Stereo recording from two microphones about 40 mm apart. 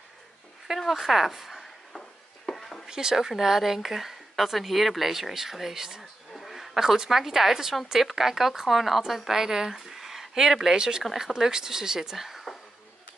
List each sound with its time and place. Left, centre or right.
0.7 s speech: centre
2.9 s a woman's voice: centre